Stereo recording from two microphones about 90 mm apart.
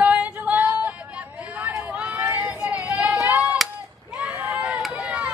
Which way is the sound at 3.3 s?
15° right (ahead or behind).